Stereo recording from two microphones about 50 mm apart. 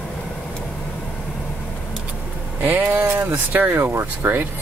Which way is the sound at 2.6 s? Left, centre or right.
Right.